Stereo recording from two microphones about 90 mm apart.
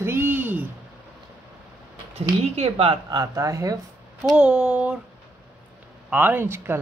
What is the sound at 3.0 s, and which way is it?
Speech, 40° right (ahead or behind).